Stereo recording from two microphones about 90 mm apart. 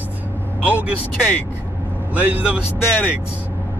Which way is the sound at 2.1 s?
20° right (ahead or behind).